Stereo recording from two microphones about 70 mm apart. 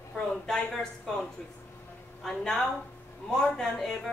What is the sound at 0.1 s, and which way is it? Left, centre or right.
Speech, centre.